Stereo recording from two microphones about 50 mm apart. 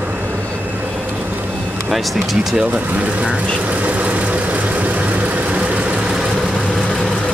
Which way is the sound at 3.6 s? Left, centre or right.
Right.